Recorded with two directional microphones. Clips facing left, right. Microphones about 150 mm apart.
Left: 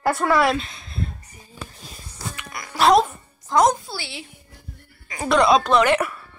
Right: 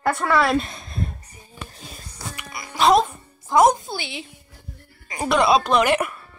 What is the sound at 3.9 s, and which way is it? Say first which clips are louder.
Speech: right 3 dB; 20° right (ahead or behind).